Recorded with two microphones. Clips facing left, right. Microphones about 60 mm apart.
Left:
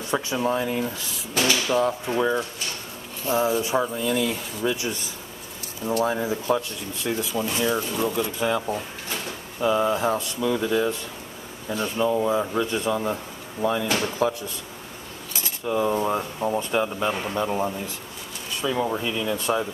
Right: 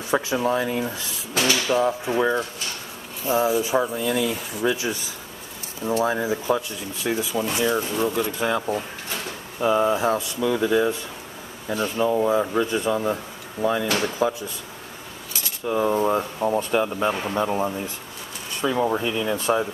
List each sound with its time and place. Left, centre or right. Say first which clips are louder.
0.3 s speech: right 2 dB; centre
15.8 s speech: right 3 dB; centre